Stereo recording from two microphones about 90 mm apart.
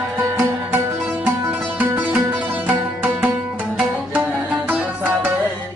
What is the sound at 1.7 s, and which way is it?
Music, 20° right (ahead or behind).